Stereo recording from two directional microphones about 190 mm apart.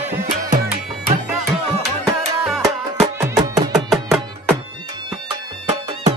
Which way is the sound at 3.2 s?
20° right (ahead or behind).